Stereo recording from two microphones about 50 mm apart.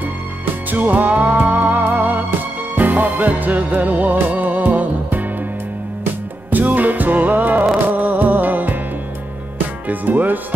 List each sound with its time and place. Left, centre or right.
0.7 s music: right
6.5 s music: right
9.8 s music: right